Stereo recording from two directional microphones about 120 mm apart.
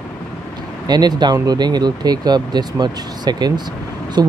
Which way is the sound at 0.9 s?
35° right (ahead or behind).